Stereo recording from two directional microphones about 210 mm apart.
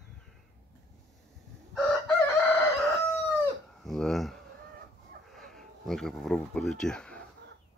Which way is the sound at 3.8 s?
Centre (ahead or behind).